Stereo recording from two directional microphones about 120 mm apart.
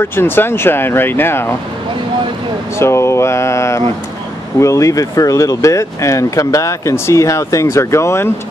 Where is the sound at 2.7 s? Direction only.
20° left (ahead or behind).